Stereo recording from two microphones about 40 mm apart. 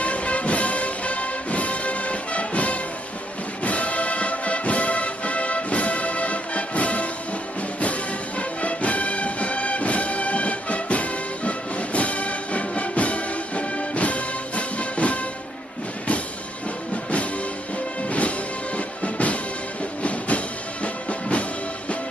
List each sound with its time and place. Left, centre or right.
0.0 s music: left
18.0 s music: left